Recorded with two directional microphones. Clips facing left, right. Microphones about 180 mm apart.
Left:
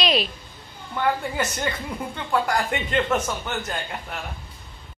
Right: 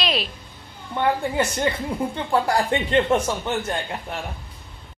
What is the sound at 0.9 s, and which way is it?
A woman's voice, 25° right (ahead or behind).